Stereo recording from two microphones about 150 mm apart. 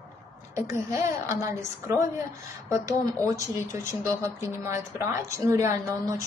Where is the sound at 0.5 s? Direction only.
20° right (ahead or behind).